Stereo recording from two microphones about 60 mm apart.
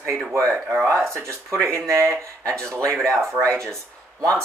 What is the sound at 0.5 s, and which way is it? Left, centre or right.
Speech, right.